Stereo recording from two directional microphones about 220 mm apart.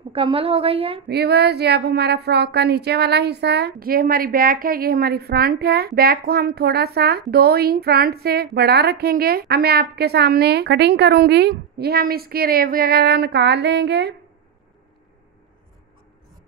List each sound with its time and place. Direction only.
0.1 s a woman's voice: 25° right (ahead or behind)
1.0 s speech: 45° right (ahead or behind)